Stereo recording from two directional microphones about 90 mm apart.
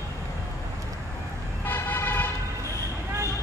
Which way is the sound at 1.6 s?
25° left (ahead or behind).